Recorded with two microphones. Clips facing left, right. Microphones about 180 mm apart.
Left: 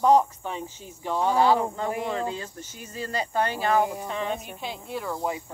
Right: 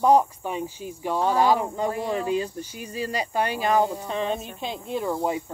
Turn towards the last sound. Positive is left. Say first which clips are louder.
# right 4 dB
turn(degrees=-20)  # may be behind; listen again after turning